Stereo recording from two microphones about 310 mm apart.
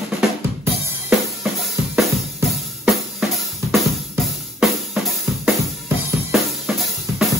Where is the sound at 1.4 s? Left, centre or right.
Centre.